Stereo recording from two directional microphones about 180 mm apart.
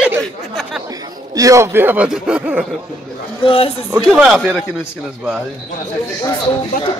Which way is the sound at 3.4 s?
30° left (ahead or behind).